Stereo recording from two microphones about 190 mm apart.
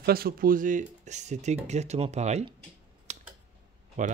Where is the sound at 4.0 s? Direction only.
40° right (ahead or behind).